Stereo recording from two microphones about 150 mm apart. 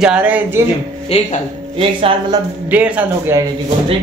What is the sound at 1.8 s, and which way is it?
Speech, 35° right (ahead or behind).